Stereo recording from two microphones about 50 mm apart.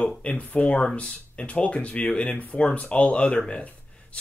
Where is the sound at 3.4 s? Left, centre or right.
Left.